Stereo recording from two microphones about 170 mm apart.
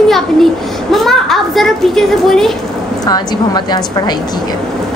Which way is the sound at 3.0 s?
25° left (ahead or behind).